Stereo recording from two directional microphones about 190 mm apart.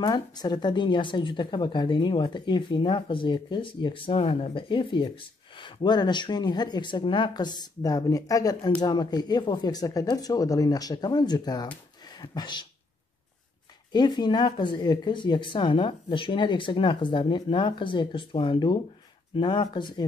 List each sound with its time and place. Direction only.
0.0 s a woman's voice: 20° left (ahead or behind)
13.9 s a woman's voice: 25° left (ahead or behind)